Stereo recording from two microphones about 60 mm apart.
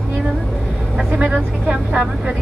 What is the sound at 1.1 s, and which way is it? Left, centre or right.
Speech, centre.